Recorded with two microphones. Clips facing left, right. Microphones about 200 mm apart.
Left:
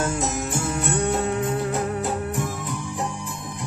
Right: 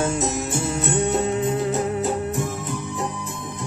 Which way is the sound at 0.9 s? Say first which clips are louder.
Right 2 dB; 20° right (ahead or behind).